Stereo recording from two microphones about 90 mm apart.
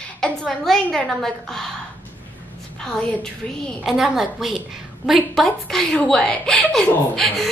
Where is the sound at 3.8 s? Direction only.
5° right (ahead or behind).